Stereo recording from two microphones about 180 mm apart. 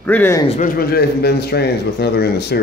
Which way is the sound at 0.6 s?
60° left (ahead or behind).